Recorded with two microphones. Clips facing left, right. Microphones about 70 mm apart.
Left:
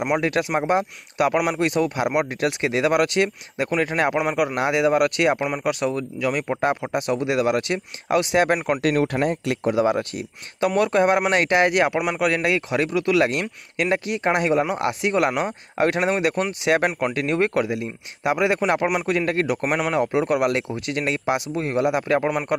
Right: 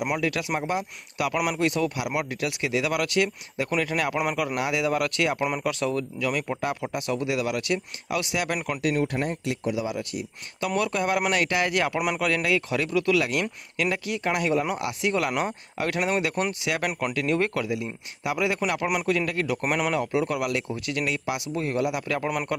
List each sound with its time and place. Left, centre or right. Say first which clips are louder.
0.0 s speech: left 5 dB; left
4.2 s a man's voice: left 5 dB; centre
4.6 s speech: left 8 dB; left
8.8 s speech: left 3 dB; left
9.7 s speech: left 10 dB; left
10.8 s speech: left 7 dB; left